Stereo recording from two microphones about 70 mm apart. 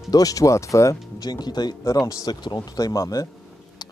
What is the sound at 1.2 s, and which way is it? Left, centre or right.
Speech, left.